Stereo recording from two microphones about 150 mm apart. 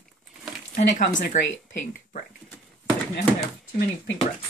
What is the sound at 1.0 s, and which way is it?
Speech, 70° left (ahead or behind).